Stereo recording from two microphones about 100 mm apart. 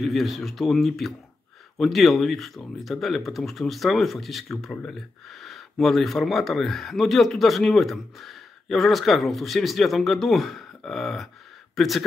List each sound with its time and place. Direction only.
0.0 s speech: centre (ahead or behind)